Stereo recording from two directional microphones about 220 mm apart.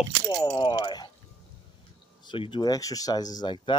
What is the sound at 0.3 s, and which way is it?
Speech, 20° left (ahead or behind).